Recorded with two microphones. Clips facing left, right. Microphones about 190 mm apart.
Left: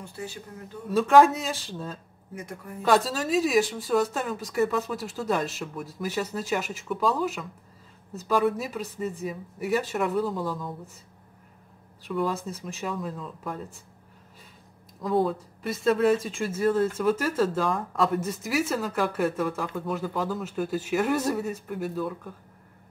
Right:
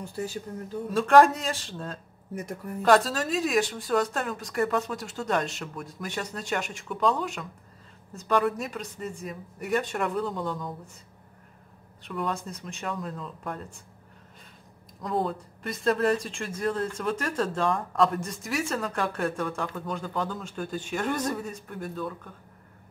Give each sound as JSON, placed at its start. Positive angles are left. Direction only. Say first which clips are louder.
{"t": 0.0, "sound": "speech", "louder": "right 4 dB", "side_deg": -40}
{"t": 0.8, "sound": "speech", "louder": "left 1 dB", "side_deg": 0}
{"t": 12.0, "sound": "speech", "louder": "left 4 dB", "side_deg": 0}
{"t": 15.0, "sound": "speech", "louder": "left 4 dB", "side_deg": 0}